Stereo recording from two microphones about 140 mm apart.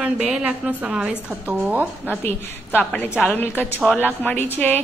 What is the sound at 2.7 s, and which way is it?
A woman's voice, 15° left (ahead or behind).